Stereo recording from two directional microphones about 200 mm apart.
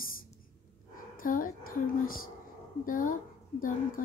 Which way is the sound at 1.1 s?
45° left (ahead or behind).